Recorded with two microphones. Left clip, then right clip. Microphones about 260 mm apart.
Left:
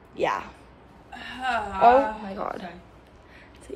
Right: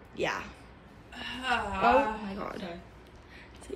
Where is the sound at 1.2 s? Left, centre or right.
Right.